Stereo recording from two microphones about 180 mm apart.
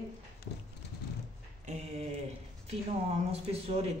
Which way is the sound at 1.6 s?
40° right (ahead or behind).